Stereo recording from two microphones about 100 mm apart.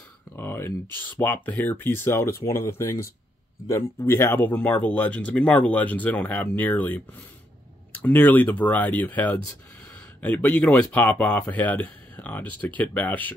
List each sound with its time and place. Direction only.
0.4 s speech: 25° left (ahead or behind)